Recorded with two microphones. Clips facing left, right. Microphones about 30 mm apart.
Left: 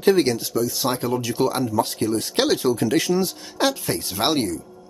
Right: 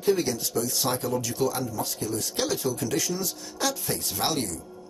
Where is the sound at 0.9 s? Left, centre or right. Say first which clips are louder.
Left 4 dB; left.